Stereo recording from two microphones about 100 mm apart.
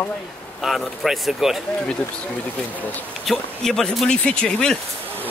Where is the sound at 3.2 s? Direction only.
5° left (ahead or behind).